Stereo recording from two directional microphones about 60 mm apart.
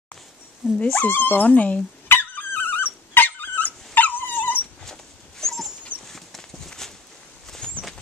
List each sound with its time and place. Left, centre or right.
0.8 s speech: left
2.0 s dog: left
5.4 s dog: centre
6.0 s walk: centre
7.6 s a sound: centre